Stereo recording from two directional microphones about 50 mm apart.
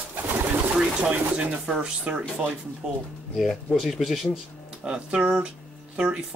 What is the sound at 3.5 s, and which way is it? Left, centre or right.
Speech, centre.